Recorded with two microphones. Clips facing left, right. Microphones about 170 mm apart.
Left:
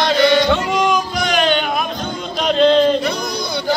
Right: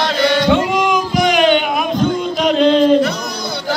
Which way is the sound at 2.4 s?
5° right (ahead or behind).